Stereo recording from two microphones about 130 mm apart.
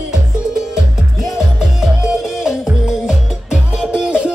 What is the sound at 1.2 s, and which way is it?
Music, 5° right (ahead or behind).